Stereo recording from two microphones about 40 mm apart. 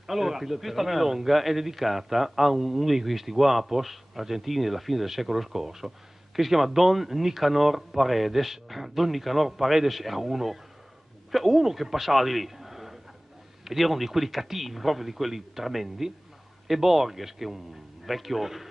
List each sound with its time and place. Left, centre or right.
0.0 s a man's voice: centre